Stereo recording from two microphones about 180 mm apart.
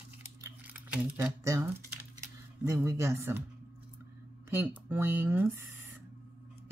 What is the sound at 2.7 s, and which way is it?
Speech, 15° right (ahead or behind).